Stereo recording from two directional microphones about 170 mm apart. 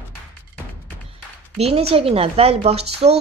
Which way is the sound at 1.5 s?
35° right (ahead or behind).